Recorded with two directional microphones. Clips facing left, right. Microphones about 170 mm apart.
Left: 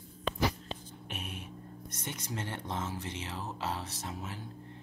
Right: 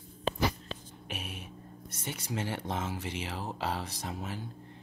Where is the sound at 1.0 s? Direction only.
Centre (ahead or behind).